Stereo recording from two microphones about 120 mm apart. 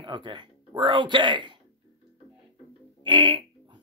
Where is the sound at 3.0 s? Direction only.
40° right (ahead or behind).